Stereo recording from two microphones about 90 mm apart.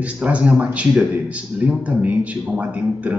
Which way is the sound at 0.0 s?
15° right (ahead or behind).